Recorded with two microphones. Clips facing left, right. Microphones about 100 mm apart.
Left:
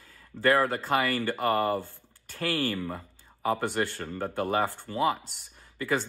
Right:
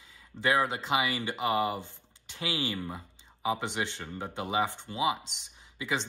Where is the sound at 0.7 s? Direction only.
50° left (ahead or behind).